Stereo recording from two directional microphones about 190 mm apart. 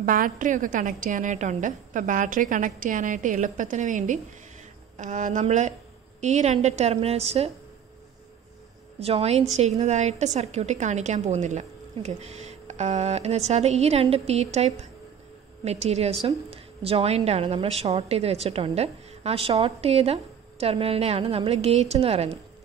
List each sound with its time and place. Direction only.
0.0 s a woman's voice: 45° right (ahead or behind)
9.0 s a woman's voice: 30° right (ahead or behind)